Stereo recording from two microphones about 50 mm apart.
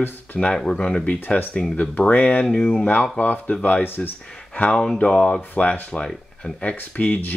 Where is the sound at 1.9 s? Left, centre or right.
Left.